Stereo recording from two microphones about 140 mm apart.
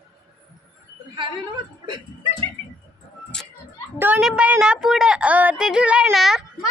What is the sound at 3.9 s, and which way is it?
A woman's voice, 15° right (ahead or behind).